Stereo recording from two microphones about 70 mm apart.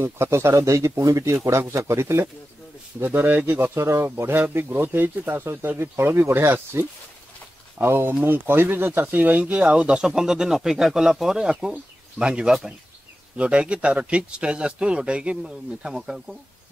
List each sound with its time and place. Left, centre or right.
0.0 s speech: right; by 16.3 s centre